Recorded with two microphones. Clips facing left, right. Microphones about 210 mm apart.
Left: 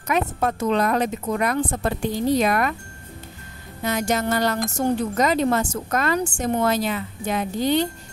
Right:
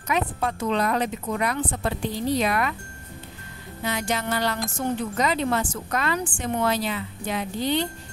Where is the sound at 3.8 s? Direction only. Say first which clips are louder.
Left 4 dB; 45° left (ahead or behind).